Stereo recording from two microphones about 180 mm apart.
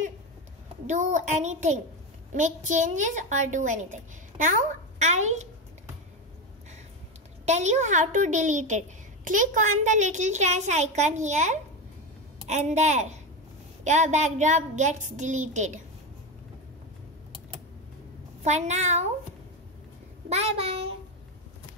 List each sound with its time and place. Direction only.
0.8 s a child's voice: 45° right (ahead or behind)
7.4 s a child's voice: 40° right (ahead or behind)
18.4 s a child's voice: 40° right (ahead or behind)
20.2 s a child's voice: 35° right (ahead or behind)